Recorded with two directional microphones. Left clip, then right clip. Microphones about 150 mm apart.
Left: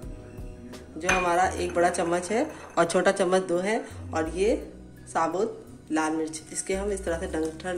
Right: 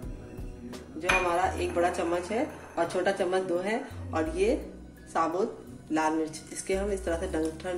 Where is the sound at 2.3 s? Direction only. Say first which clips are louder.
Left 4 dB; 50° left (ahead or behind).